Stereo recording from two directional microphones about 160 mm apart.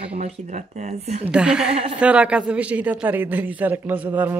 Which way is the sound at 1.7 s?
40° right (ahead or behind).